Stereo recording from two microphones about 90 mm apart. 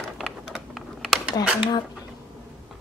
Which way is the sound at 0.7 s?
Centre (ahead or behind).